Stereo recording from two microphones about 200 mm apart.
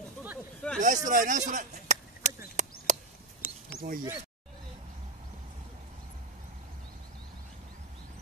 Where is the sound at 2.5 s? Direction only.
40° right (ahead or behind).